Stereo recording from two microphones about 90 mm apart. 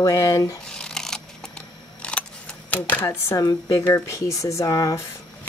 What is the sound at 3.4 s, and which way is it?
Speech, 50° left (ahead or behind).